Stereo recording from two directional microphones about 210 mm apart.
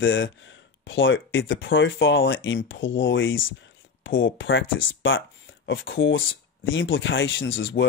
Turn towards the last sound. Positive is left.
turn(degrees=60)  # may be behind; listen again after turning